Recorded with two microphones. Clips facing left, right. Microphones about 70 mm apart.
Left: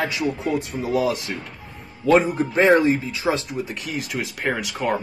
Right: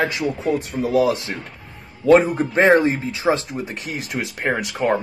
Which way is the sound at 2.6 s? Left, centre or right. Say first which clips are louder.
Right 1 dB; right.